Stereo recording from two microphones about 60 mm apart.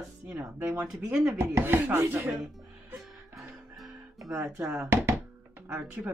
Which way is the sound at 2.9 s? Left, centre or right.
Centre.